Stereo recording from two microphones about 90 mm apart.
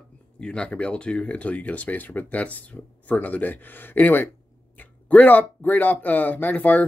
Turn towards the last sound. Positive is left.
turn(degrees=20)  # may be behind; listen again after turning